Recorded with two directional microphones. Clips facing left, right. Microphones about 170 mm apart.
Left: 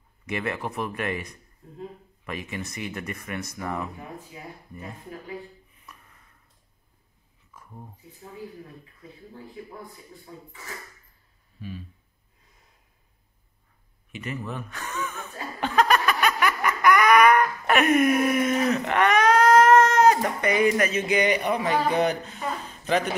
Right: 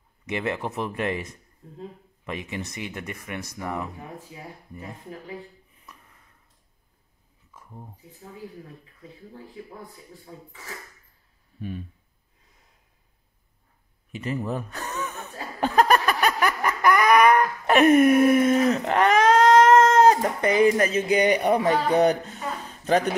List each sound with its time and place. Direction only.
0.3 s speech: 25° right (ahead or behind)
14.1 s speech: 35° right (ahead or behind)
15.6 s a sound: 40° right (ahead or behind)